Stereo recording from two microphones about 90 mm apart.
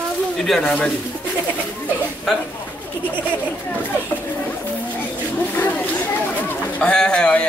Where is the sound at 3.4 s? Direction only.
20° left (ahead or behind).